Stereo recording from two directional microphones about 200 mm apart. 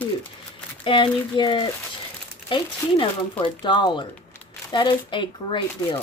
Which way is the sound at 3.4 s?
25° left (ahead or behind).